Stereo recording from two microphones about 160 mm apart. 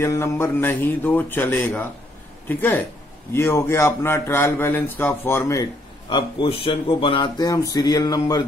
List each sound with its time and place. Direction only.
0.0 s a man's voice: 15° left (ahead or behind)